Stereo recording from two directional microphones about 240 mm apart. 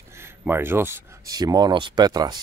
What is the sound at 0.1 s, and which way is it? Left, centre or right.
Speech, centre.